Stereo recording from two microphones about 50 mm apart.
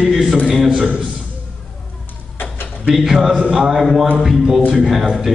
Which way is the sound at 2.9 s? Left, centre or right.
Centre.